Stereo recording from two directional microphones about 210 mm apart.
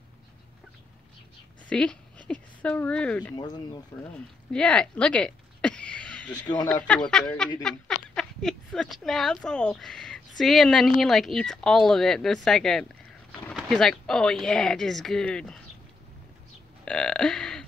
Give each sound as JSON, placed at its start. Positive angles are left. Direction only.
{"t": 1.7, "sound": "speech", "side_deg": 5}
{"t": 3.3, "sound": "speech", "side_deg": 20}
{"t": 4.5, "sound": "a sound", "side_deg": 5}
{"t": 6.3, "sound": "speech", "side_deg": 20}
{"t": 6.7, "sound": "speech", "side_deg": 5}
{"t": 16.8, "sound": "burping", "side_deg": 5}